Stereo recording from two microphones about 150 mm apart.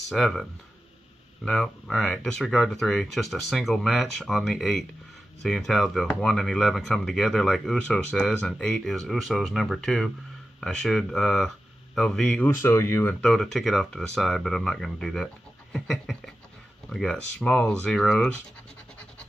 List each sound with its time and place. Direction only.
0.1 s speech: centre (ahead or behind)
12.4 s speech: 15° left (ahead or behind)
13.2 s speech: centre (ahead or behind)